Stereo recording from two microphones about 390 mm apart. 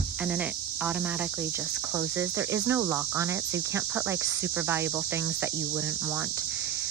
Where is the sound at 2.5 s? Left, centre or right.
Centre.